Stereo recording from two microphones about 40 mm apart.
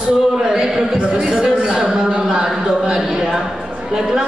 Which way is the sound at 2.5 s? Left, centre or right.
Centre.